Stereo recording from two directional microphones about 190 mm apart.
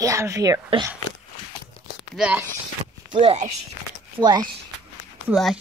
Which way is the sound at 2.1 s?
5° right (ahead or behind).